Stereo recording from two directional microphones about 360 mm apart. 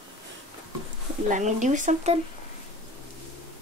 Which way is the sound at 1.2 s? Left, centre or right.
Right.